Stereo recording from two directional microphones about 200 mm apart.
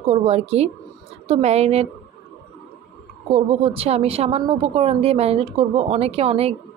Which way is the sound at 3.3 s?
30° right (ahead or behind).